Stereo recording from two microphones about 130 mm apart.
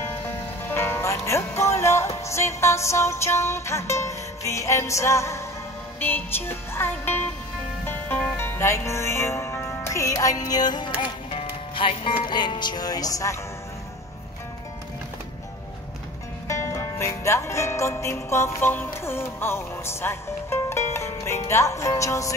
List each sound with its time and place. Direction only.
0.7 s music: 15° left (ahead or behind); by 10.9 s 35° left (ahead or behind)
11.0 s speech: 45° left (ahead or behind); by 13.4 s 25° left (ahead or behind)
16.4 s music: 20° left (ahead or behind)